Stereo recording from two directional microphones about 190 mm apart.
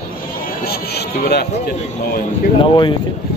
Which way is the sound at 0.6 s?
55° left (ahead or behind).